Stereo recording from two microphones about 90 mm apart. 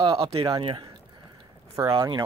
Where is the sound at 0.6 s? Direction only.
70° right (ahead or behind).